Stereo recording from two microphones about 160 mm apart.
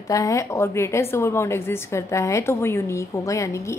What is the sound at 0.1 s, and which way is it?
A woman's voice, 20° left (ahead or behind).